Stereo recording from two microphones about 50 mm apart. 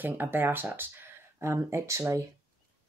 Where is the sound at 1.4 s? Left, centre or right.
Right.